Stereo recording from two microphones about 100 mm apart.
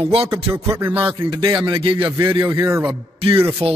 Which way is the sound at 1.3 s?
40° right (ahead or behind).